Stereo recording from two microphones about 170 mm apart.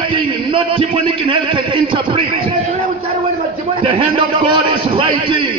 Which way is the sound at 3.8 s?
30° right (ahead or behind).